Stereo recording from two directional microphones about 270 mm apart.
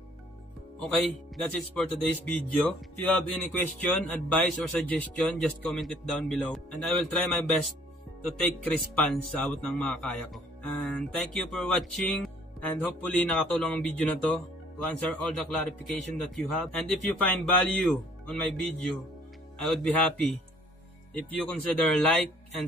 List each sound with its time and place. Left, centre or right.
0.8 s a man's voice: centre
21.4 s a man's voice: centre